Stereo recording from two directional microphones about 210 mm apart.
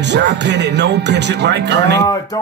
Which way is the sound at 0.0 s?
55° right (ahead or behind).